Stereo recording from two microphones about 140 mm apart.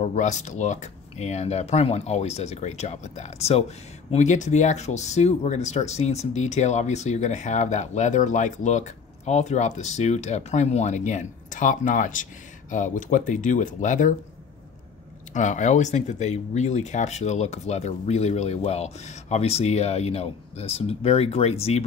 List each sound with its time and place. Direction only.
0.0 s speech: 60° left (ahead or behind)
15.3 s speech: 60° left (ahead or behind)